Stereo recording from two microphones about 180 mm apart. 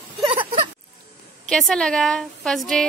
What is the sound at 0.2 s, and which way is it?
Whimper, 25° right (ahead or behind).